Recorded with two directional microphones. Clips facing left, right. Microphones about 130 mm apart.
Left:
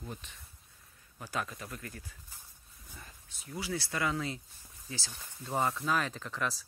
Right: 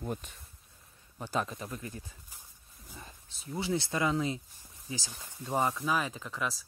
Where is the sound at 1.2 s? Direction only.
25° right (ahead or behind).